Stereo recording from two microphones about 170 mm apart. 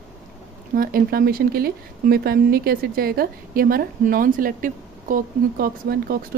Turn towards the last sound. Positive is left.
turn(degrees=-60)  # may be behind; listen again after turning